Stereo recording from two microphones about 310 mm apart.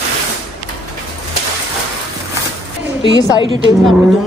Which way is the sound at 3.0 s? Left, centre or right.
Centre.